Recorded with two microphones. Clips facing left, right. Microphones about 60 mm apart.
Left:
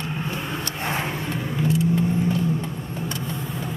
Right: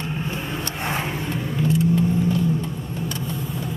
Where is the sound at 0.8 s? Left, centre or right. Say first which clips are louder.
Even; centre.